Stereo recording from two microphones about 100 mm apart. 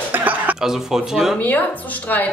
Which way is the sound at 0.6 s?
5° right (ahead or behind).